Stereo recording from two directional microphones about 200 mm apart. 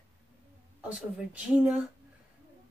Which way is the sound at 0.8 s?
5° right (ahead or behind).